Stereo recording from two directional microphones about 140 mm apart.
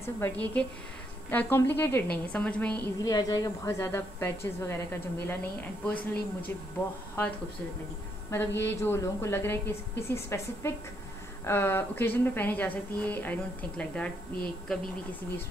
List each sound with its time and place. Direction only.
0.0 s a woman's voice: 15° left (ahead or behind)
3.0 s a woman's voice: 25° left (ahead or behind); by 5.9 s 10° left (ahead or behind)
8.3 s a woman's voice: 15° left (ahead or behind)